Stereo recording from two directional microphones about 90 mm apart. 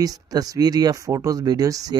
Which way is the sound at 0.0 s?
45° right (ahead or behind).